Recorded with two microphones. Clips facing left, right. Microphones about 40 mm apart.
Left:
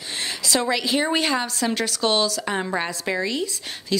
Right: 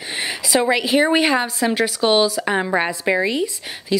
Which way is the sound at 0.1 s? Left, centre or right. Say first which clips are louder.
Right 4 dB; centre.